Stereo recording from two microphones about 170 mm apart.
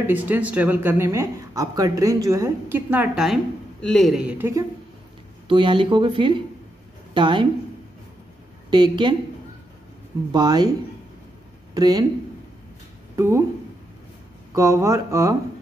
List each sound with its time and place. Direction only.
0.0 s a man's voice: 10° right (ahead or behind)
5.5 s speech: 30° right (ahead or behind)
8.6 s speech: 25° right (ahead or behind)
10.3 s speech: 25° right (ahead or behind)
11.7 s speech: 25° right (ahead or behind)
13.1 s speech: 15° right (ahead or behind)
14.5 s speech: 15° right (ahead or behind)